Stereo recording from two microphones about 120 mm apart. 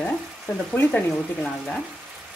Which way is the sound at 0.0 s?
10° left (ahead or behind).